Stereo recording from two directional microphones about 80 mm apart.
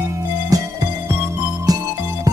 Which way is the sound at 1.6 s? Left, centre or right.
Right.